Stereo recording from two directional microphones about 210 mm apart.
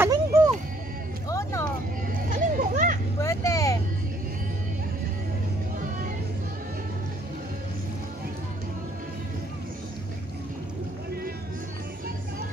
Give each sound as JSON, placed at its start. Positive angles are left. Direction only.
{"t": 0.0, "sound": "music", "side_deg": -15}
{"t": 1.3, "sound": "vehicle", "side_deg": 15}
{"t": 2.2, "sound": "a sound", "side_deg": -40}
{"t": 3.2, "sound": "vehicle", "side_deg": 15}